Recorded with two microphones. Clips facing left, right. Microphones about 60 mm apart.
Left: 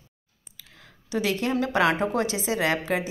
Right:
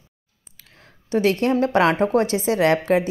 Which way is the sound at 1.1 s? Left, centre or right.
Right.